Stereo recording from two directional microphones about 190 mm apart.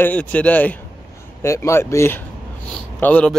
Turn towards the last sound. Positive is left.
turn(degrees=5)  # may be behind; listen again after turning